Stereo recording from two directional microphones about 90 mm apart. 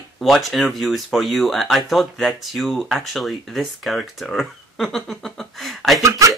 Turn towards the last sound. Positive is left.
turn(degrees=-35)  # may be behind; listen again after turning